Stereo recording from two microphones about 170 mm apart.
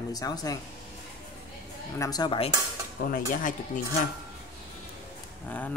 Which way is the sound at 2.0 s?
20° left (ahead or behind).